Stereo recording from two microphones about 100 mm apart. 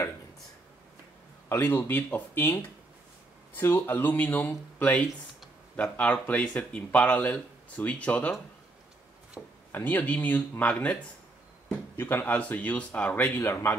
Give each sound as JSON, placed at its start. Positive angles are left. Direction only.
{"t": 1.5, "sound": "speech", "side_deg": 25}
{"t": 9.4, "sound": "speech", "side_deg": 0}
{"t": 9.7, "sound": "speech", "side_deg": 15}
{"t": 13.4, "sound": "speech", "side_deg": 25}